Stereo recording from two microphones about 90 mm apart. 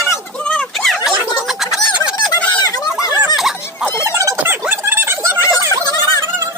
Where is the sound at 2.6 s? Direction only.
40° left (ahead or behind).